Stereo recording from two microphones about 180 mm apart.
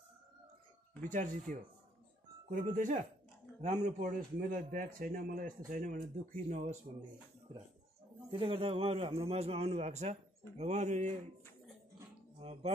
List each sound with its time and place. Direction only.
1.1 s a man's voice: 45° right (ahead or behind)
8.3 s a man's voice: 30° right (ahead or behind)
12.4 s speech: 35° right (ahead or behind)